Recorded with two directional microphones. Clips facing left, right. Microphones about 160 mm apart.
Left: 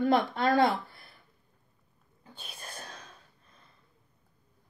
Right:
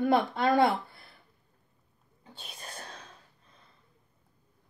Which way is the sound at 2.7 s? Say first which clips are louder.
Right 1 dB; 10° left (ahead or behind).